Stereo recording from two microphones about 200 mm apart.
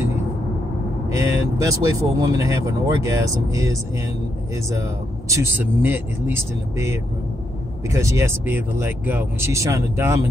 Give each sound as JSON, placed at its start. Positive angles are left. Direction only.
{"t": 1.1, "sound": "speech", "side_deg": -15}
{"t": 5.3, "sound": "speech", "side_deg": -10}